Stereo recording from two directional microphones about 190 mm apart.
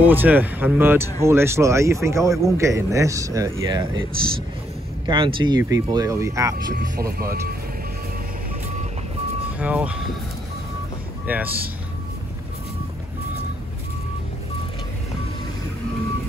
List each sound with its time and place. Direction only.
0.0 s a man's voice: 10° right (ahead or behind)
5.0 s a man's voice: 25° right (ahead or behind)
6.8 s speech: 50° right (ahead or behind)
9.6 s a man's voice: 5° right (ahead or behind)
11.2 s a man's voice: 10° right (ahead or behind)